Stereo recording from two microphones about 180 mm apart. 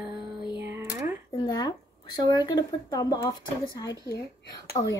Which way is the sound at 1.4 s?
25° left (ahead or behind).